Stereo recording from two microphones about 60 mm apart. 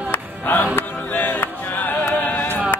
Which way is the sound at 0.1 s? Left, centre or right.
Left.